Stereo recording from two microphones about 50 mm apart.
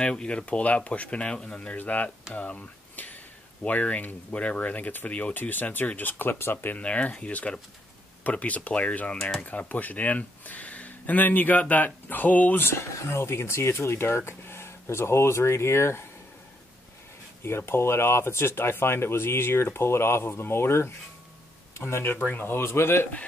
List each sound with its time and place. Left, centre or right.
0.0 s speech: centre; by 6.8 s left
6.8 s speech: left
12.9 s speech: left
17.4 s speech: left
22.6 s speech: left